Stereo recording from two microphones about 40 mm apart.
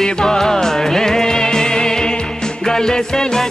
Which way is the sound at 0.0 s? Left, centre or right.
Centre.